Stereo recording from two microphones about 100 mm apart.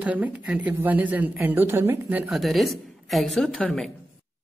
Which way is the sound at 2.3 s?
Centre (ahead or behind).